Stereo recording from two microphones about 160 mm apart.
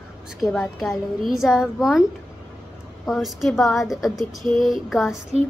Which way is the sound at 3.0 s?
Centre (ahead or behind).